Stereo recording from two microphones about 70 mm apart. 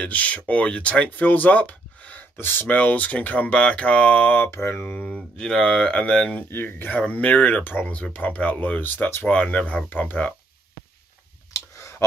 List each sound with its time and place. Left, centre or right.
0.0 s speech: left
2.7 s speech: left
4.5 s mantra: left
5.0 s speech: centre
6.3 s speech: left
9.2 s speech: centre